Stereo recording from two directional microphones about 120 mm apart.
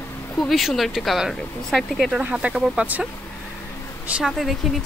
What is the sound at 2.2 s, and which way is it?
Speech, 10° right (ahead or behind).